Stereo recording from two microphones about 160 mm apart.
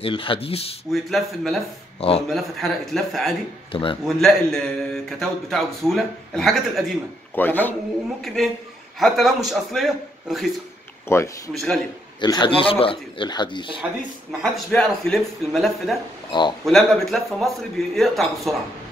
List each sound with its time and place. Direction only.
0.0 s speech: 35° left (ahead or behind)
0.9 s a man's voice: centre (ahead or behind)
2.0 s speech: 35° left (ahead or behind)
2.2 s a man's voice: centre (ahead or behind)
3.7 s speech: 35° left (ahead or behind)
4.2 s a man's voice: 5° left (ahead or behind)
7.3 s speech: 10° left (ahead or behind)
8.2 s a man's voice: centre (ahead or behind)
11.1 s speech: 15° left (ahead or behind)
11.5 s a man's voice: centre (ahead or behind)
12.2 s a man's voice: 30° left (ahead or behind)
14.4 s a man's voice: 5° left (ahead or behind)
16.3 s a man's voice: 30° left (ahead or behind)
16.6 s a man's voice: centre (ahead or behind)